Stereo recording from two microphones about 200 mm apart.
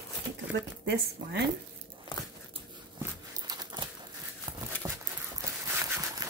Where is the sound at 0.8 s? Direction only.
55° right (ahead or behind).